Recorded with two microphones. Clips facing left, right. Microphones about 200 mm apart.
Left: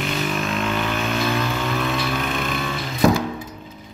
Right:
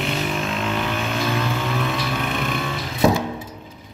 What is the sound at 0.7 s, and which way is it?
Vehicle, 10° right (ahead or behind).